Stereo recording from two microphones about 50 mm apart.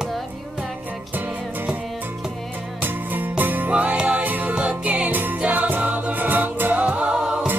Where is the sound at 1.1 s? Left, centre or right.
Right.